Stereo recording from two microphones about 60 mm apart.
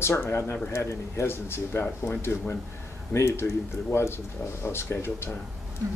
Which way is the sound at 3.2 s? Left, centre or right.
Left.